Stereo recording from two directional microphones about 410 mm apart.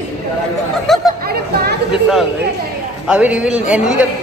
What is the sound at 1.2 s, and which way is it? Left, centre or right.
Chatter, right.